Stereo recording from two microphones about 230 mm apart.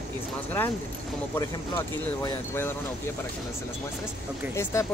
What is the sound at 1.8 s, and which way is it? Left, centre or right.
Speech, centre.